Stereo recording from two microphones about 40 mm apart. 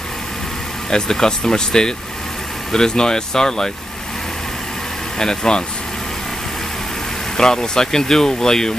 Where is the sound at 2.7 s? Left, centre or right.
Centre.